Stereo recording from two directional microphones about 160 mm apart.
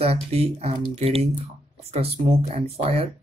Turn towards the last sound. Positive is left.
turn(degrees=-40)  # may be behind; listen again after turning